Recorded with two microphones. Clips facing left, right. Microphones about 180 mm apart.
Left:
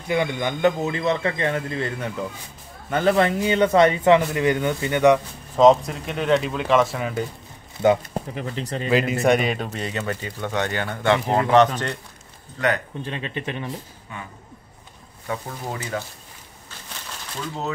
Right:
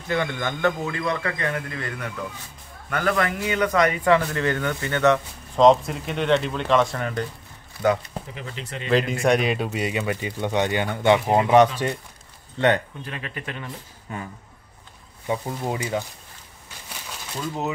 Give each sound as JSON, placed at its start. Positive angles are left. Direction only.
{"t": 0.1, "sound": "a man's voice", "side_deg": 15}
{"t": 5.6, "sound": "speech", "side_deg": 0}
{"t": 8.1, "sound": "speech", "side_deg": 40}
{"t": 8.8, "sound": "speech", "side_deg": 5}
{"t": 9.7, "sound": "speech", "side_deg": -10}
{"t": 12.5, "sound": "speech", "side_deg": -30}
{"t": 13.0, "sound": "a man's voice", "side_deg": 25}
{"t": 14.1, "sound": "speech", "side_deg": -40}
{"t": 15.2, "sound": "speech", "side_deg": -15}